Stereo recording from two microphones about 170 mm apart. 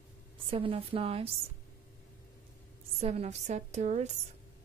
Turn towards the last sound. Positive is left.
turn(degrees=-45)  # may be behind; listen again after turning